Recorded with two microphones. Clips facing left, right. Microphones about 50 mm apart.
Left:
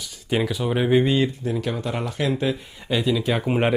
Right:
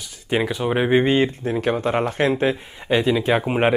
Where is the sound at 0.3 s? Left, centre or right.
Right.